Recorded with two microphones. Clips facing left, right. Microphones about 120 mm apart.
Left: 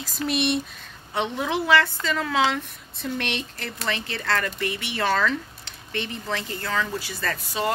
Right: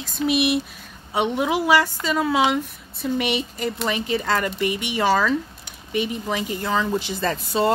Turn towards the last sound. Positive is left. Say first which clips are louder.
# right 6 dB
turn(degrees=-30)  # may be behind; listen again after turning